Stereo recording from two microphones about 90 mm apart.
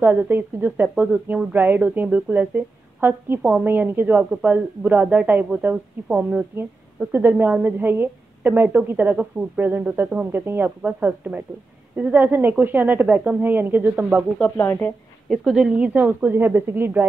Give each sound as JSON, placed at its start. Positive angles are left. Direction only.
{"t": 0.0, "sound": "a woman's voice", "side_deg": -25}
{"t": 14.6, "sound": "speech", "side_deg": 25}
{"t": 15.2, "sound": "a woman's voice", "side_deg": 0}